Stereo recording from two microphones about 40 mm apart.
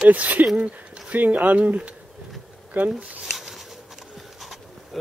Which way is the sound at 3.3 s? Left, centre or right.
Centre.